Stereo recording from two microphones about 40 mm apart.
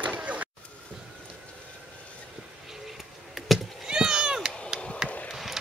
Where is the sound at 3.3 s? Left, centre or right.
Centre.